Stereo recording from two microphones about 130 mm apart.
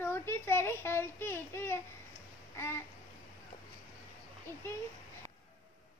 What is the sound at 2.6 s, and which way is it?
Babbling, 20° left (ahead or behind).